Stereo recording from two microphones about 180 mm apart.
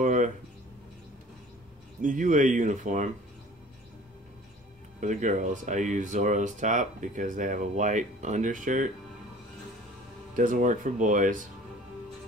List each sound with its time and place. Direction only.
0.0 s a sound: 45° right (ahead or behind)
2.0 s speech: 45° right (ahead or behind)
5.0 s speech: 45° right (ahead or behind)
10.3 s speech: 45° right (ahead or behind)